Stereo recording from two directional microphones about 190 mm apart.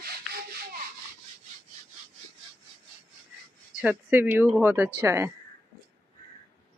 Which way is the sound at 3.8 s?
10° right (ahead or behind).